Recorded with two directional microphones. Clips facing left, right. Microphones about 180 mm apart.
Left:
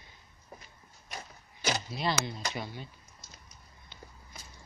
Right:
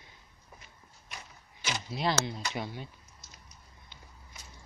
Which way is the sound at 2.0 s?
15° right (ahead or behind).